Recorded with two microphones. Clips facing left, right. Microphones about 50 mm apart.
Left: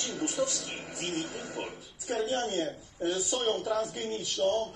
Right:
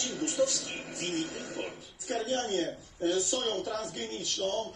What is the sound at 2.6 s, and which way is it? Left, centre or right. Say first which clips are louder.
Speech: even; left.